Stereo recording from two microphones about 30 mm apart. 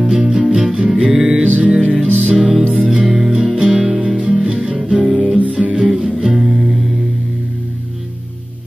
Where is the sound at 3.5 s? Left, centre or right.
Right.